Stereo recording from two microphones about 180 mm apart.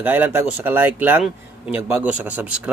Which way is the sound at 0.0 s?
10° right (ahead or behind).